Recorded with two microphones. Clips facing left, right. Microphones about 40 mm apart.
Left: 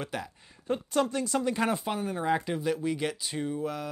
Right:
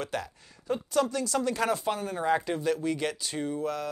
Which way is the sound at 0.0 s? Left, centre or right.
Centre.